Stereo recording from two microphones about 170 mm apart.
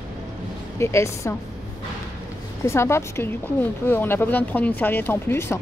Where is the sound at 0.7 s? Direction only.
15° left (ahead or behind).